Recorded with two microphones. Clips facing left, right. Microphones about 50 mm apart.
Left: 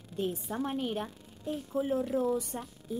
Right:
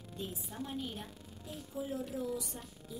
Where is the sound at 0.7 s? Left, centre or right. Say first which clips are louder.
Left 8 dB; left.